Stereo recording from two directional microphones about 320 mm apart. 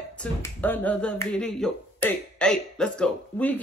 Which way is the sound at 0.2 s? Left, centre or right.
Centre.